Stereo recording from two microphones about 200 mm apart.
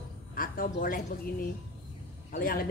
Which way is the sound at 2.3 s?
45° left (ahead or behind).